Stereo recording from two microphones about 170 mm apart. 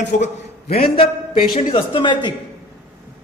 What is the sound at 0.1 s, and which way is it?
Speech, 50° left (ahead or behind).